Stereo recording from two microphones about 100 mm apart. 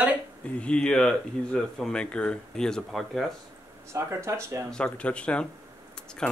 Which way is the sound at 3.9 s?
30° right (ahead or behind).